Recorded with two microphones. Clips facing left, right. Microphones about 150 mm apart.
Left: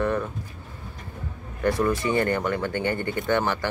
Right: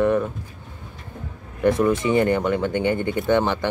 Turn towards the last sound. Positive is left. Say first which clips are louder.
# right 4 dB
turn(degrees=-20)  # may be behind; listen again after turning